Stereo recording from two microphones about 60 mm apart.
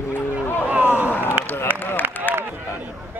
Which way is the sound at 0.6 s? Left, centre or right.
Right.